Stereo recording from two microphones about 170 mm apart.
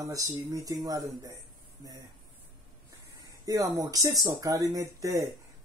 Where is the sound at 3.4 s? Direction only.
20° right (ahead or behind).